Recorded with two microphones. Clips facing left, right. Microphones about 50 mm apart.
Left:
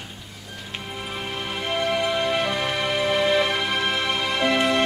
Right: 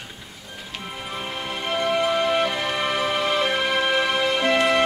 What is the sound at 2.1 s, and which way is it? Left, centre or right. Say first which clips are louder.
Music: right 2 dB; centre.